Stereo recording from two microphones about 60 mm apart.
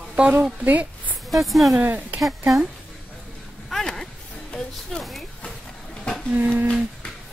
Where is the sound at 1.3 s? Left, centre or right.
Centre.